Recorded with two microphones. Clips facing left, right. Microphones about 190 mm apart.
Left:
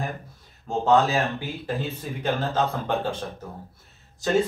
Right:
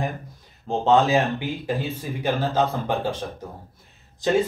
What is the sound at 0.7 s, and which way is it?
Speech, 15° right (ahead or behind).